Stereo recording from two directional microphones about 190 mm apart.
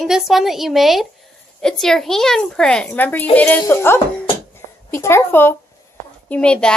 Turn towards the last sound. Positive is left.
turn(degrees=5)  # may be behind; listen again after turning